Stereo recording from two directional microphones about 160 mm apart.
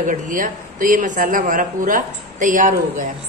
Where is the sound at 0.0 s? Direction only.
55° right (ahead or behind).